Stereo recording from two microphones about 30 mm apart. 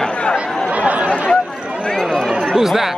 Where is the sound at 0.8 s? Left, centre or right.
Right.